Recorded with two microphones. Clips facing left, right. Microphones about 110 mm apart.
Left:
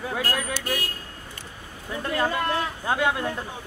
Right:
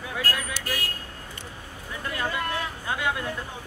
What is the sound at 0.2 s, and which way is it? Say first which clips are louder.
Vehicle: left 3 dB; 20° left (ahead or behind).